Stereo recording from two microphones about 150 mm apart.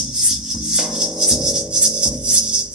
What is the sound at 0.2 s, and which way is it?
Music, 5° right (ahead or behind).